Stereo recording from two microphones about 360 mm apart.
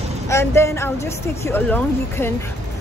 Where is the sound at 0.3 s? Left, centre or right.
Centre.